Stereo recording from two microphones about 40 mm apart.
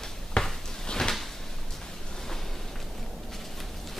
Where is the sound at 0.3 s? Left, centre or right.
Centre.